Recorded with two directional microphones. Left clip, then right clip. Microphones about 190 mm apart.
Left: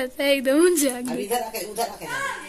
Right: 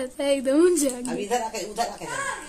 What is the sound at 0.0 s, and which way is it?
Speech, 5° left (ahead or behind).